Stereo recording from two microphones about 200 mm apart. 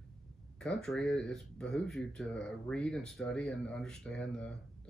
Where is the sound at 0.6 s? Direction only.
5° left (ahead or behind).